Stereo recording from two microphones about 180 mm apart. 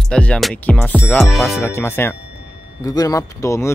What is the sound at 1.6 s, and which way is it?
Speech, 15° left (ahead or behind).